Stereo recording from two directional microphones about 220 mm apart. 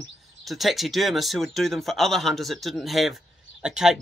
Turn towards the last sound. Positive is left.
turn(degrees=0)  # may be behind; listen again after turning